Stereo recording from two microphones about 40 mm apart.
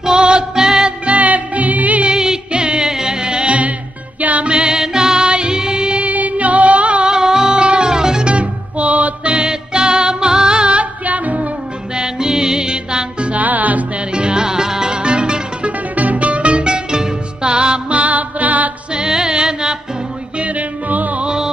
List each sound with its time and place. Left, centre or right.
0.0 s music: right
1.0 s music: right
2.0 s music: right
6.0 s music: right
7.1 s music: centre
8.3 s music: right
9.4 s music: right
10.8 s music: right
11.9 s music: centre
13.4 s music: right
14.1 s music: right
16.0 s music: right
18.9 s music: centre
20.3 s music: right